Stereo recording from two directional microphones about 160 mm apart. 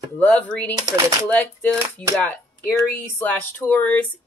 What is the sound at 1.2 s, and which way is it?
Speech, 10° left (ahead or behind).